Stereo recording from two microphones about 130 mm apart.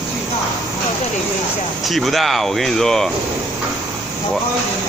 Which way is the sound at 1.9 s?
Centre (ahead or behind).